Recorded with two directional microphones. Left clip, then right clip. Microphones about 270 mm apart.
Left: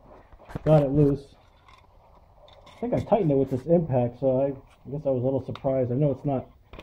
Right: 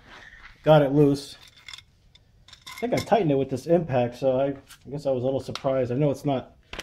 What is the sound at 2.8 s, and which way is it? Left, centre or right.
Speech, right.